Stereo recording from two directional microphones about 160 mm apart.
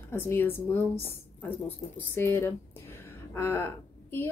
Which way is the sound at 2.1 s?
15° left (ahead or behind).